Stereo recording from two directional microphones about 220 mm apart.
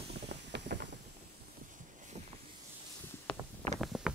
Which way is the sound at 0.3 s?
50° right (ahead or behind).